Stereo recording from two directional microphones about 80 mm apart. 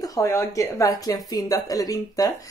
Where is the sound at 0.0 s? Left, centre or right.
Left.